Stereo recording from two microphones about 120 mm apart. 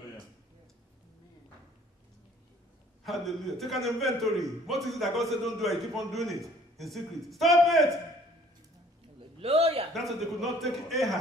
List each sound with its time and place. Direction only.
3.0 s a man's voice: centre (ahead or behind)
9.4 s a sound: 55° right (ahead or behind)
9.9 s a man's voice: centre (ahead or behind)